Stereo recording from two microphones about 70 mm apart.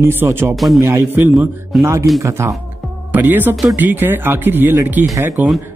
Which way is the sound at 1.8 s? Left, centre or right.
Right.